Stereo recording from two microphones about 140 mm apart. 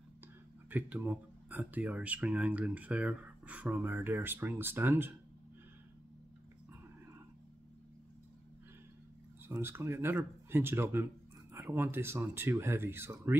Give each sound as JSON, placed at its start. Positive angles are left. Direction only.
{"t": 0.7, "sound": "speech", "side_deg": -10}
{"t": 9.5, "sound": "speech", "side_deg": -15}